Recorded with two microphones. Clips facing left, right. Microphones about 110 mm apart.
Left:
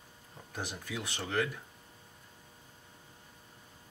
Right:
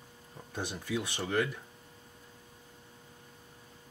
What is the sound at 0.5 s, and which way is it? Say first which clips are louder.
Speech: right 5 dB; 20° right (ahead or behind).